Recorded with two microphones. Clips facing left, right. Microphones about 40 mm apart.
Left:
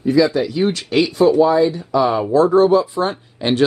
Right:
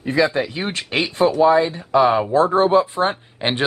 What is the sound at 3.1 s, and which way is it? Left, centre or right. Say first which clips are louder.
Speech: left 3 dB; right.